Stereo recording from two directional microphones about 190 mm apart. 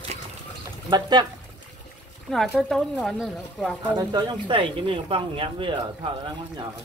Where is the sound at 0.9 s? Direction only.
20° right (ahead or behind).